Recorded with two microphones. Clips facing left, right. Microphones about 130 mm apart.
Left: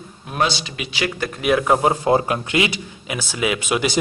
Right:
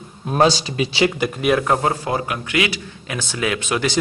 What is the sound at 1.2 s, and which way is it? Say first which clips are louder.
Speech: right 1 dB; 5° right (ahead or behind).